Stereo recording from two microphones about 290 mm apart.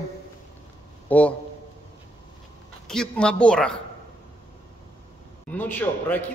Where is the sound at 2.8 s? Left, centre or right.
Centre.